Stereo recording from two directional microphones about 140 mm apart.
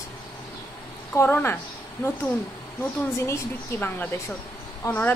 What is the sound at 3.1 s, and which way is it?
A woman's voice, 20° left (ahead or behind).